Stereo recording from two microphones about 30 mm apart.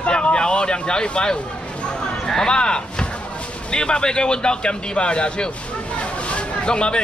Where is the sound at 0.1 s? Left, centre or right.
Left.